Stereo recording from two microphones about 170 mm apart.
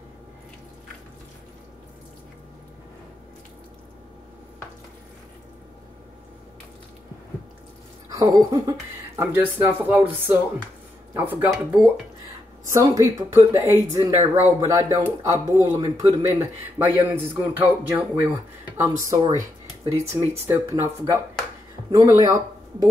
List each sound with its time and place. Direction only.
8.1 s speech: 20° right (ahead or behind)